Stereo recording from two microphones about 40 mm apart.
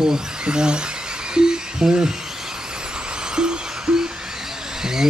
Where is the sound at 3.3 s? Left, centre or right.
Right.